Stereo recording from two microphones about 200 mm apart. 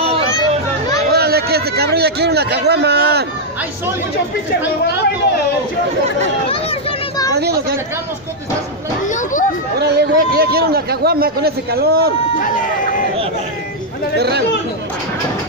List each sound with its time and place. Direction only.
0.0 s children playing: 30° right (ahead or behind)
1.1 s a sound: 50° right (ahead or behind)
6.5 s a sound: 30° left (ahead or behind)
7.3 s speech: 55° right (ahead or behind)
9.0 s speech: 40° left (ahead or behind)
9.8 s speech: 55° right (ahead or behind)
14.1 s speech: 55° right (ahead or behind)